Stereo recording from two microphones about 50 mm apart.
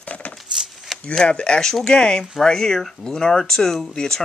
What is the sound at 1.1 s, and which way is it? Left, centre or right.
Speech, left.